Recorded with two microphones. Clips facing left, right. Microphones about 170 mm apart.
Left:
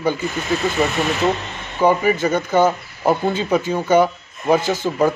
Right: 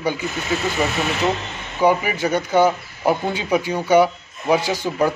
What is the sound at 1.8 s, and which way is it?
Speech, 10° right (ahead or behind).